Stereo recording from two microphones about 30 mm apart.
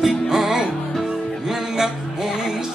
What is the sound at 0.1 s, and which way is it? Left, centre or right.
Music, centre.